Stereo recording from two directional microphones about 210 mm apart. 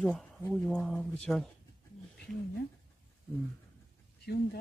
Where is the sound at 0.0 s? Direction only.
5° right (ahead or behind).